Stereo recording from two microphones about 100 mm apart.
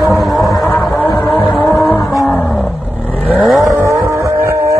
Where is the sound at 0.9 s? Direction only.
20° left (ahead or behind).